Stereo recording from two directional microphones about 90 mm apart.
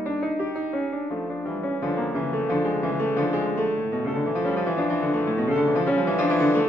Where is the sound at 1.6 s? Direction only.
25° left (ahead or behind).